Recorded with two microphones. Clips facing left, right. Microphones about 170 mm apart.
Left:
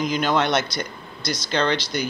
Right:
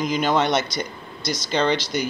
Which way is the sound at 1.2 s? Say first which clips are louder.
Right 1 dB; 45° right (ahead or behind).